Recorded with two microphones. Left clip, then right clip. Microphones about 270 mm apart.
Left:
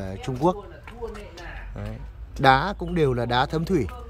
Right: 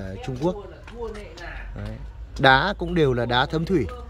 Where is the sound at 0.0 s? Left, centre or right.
Centre.